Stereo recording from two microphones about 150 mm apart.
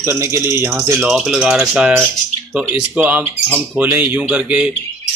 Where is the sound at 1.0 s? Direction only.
5° right (ahead or behind).